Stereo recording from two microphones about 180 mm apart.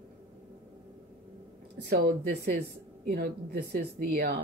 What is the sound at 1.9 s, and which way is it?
A woman's voice, 60° right (ahead or behind).